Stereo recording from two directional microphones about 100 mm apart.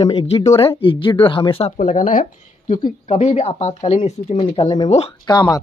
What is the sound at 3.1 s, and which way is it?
Speech, 90° left.